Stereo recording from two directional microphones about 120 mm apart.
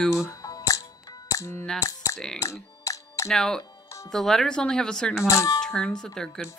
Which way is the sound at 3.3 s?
5° left (ahead or behind).